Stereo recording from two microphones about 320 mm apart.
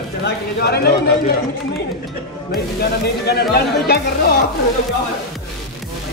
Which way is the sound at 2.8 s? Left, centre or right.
Left.